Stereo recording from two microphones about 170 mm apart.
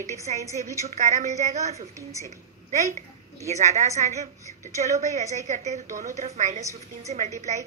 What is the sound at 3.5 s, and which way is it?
A woman's voice, 40° right (ahead or behind).